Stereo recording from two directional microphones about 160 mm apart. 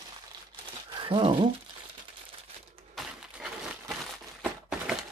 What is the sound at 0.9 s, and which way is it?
Speech, 30° right (ahead or behind).